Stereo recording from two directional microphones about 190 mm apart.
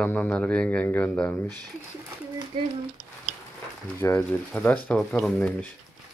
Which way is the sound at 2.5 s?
25° right (ahead or behind).